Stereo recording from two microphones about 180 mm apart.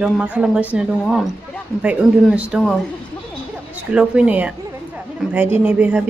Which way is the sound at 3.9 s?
5° right (ahead or behind).